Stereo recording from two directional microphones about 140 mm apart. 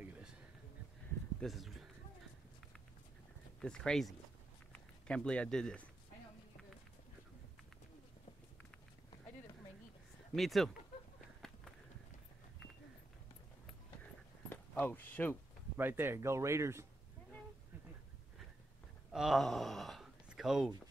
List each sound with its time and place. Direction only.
1.4 s a sound: centre (ahead or behind)
3.6 s speech: 5° left (ahead or behind)
10.3 s speech: centre (ahead or behind)
11.4 s run: 5° left (ahead or behind)
14.5 s speech: 15° left (ahead or behind)
15.8 s speech: 15° right (ahead or behind)
19.1 s speech: centre (ahead or behind)